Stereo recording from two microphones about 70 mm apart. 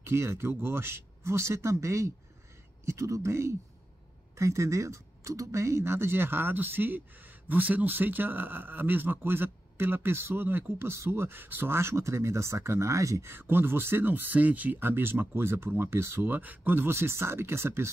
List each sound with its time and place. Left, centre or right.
0.0 s speech: right